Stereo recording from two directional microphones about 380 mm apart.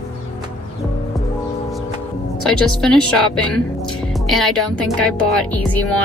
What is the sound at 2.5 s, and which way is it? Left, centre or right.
Speech, centre.